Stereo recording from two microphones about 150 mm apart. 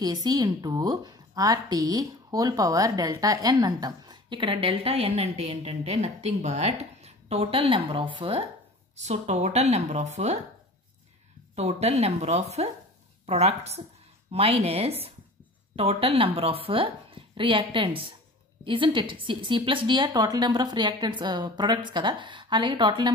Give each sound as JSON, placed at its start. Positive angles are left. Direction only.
{"t": 0.0, "sound": "a woman's voice", "side_deg": -25}
{"t": 9.0, "sound": "speech", "side_deg": -50}
{"t": 11.5, "sound": "a woman's voice", "side_deg": -45}